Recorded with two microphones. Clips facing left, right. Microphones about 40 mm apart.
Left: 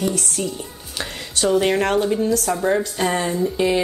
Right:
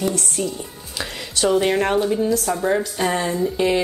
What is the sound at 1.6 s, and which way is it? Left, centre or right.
Speech, centre.